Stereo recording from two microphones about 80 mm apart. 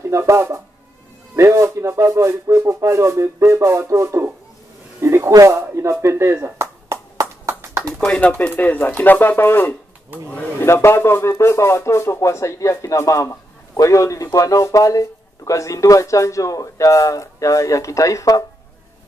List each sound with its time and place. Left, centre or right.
0.0 s speech: right
5.3 s a sound: right
8.0 s speech: centre; by 18.4 s left